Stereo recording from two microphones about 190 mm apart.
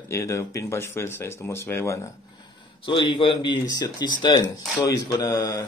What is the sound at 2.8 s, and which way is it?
Speech, 25° left (ahead or behind).